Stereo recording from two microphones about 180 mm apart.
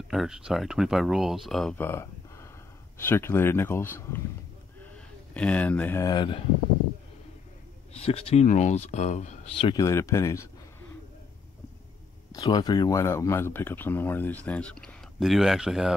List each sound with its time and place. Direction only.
0.1 s speech: centre (ahead or behind)
4.9 s speech: 5° left (ahead or behind); by 6.4 s 25° left (ahead or behind)
7.9 s speech: 35° left (ahead or behind)
9.8 s speech: 15° left (ahead or behind)
12.3 s speech: 20° left (ahead or behind); by 15.9 s centre (ahead or behind)